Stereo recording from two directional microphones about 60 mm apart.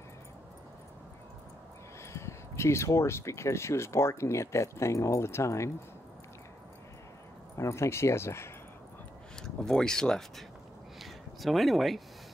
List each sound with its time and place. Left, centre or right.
2.1 s speech: left
7.5 s speech: left
9.4 s speech: centre
11.0 s a sound: centre